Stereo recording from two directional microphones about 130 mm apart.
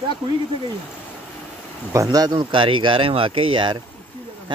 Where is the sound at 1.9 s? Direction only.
25° right (ahead or behind).